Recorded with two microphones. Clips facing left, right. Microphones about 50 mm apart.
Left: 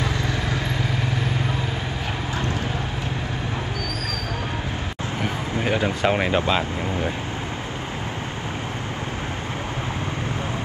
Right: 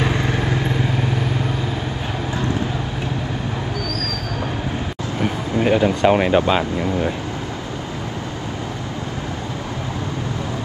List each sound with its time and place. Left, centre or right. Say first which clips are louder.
0.0 s vehicle: right 5 dB; right
5.2 s speech: right 6 dB; centre